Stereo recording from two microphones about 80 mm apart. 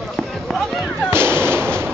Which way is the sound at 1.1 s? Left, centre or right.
Right.